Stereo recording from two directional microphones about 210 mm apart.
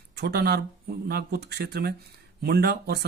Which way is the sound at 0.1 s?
50° right (ahead or behind).